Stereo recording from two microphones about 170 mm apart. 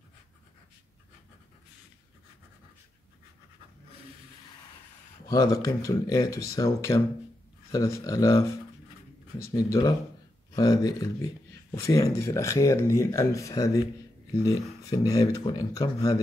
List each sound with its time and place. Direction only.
5.3 s speech: 20° left (ahead or behind)